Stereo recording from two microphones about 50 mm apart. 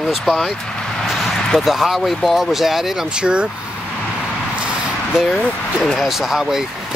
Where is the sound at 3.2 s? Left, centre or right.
Right.